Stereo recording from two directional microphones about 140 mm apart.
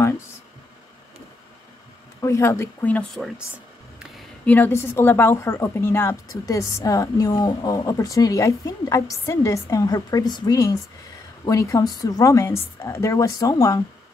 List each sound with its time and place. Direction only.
2.2 s speech: 20° left (ahead or behind)
3.2 s a sound: 5° right (ahead or behind)
4.5 s a woman's voice: 15° left (ahead or behind)